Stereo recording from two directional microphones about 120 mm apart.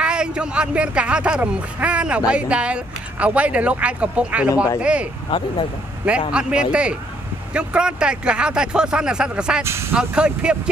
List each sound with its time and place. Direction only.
0.0 s speech: 10° right (ahead or behind)
5.3 s speech: 45° left (ahead or behind)
6.0 s speech: 10° right (ahead or behind)
9.6 s speech: 20° right (ahead or behind)
9.9 s speech: 10° right (ahead or behind)